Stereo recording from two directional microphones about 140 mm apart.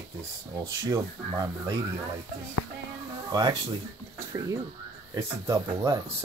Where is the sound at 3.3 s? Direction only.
30° right (ahead or behind).